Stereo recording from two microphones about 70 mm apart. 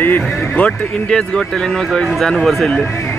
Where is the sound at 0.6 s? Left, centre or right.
Centre.